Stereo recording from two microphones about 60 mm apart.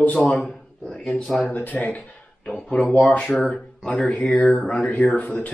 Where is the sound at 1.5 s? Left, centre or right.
Left.